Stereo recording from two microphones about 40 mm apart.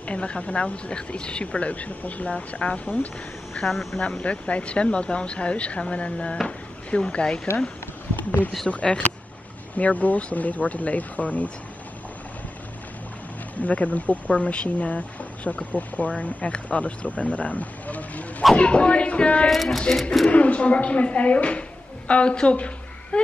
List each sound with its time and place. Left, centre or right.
0.0 s speech: left
8.2 s speech: left
13.6 s speech: left
18.6 s speech: left
19.5 s speech: centre
20.2 s speech: left